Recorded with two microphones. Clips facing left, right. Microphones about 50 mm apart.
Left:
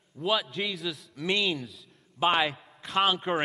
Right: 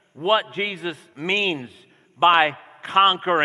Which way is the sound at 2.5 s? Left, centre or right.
Right.